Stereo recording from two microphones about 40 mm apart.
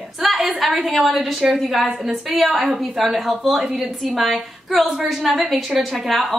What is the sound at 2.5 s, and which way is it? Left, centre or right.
Speech, centre.